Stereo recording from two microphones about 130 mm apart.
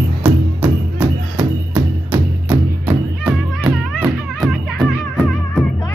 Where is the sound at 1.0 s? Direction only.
30° right (ahead or behind).